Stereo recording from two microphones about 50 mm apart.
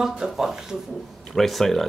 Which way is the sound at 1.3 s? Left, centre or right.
Centre.